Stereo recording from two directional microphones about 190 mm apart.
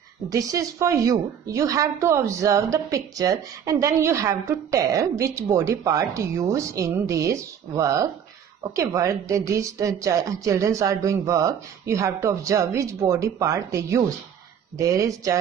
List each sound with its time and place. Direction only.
0.3 s a woman's voice: 15° right (ahead or behind)